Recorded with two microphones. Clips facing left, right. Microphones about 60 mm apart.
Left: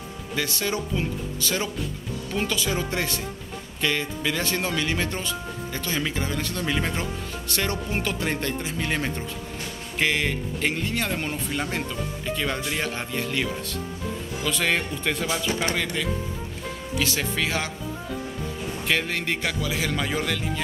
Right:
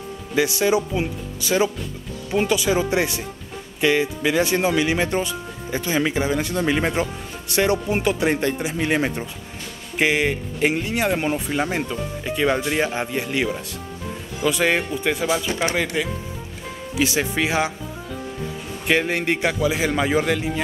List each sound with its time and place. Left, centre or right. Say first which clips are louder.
0.4 s speech: right 9 dB; centre
18.9 s a man's voice: right 6 dB; centre